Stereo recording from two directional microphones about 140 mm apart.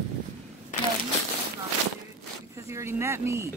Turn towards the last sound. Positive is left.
turn(degrees=-20)  # may be behind; listen again after turning